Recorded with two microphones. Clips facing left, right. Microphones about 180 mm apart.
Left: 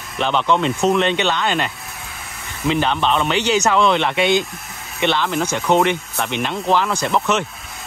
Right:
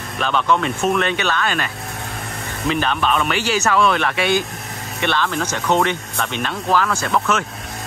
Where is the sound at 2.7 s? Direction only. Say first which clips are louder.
Left 2 dB; 20° left (ahead or behind).